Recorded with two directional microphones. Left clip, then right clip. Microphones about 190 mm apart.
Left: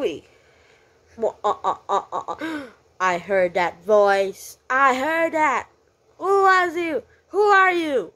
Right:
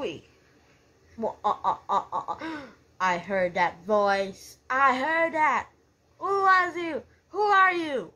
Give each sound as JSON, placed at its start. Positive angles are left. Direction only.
{"t": 1.2, "sound": "speech", "side_deg": 35}